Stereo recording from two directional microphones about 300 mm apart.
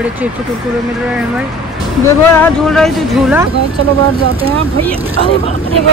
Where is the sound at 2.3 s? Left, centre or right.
Centre.